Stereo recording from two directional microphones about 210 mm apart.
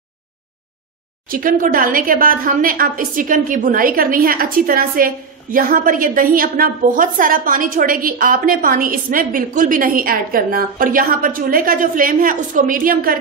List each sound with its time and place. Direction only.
1.3 s a woman's voice: 40° right (ahead or behind)